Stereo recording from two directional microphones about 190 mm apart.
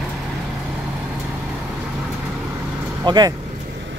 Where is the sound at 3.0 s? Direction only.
20° right (ahead or behind).